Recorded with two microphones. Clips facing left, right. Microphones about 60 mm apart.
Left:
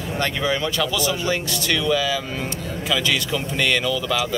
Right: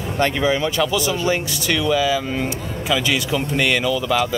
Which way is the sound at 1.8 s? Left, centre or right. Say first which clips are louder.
Right 4 dB; centre.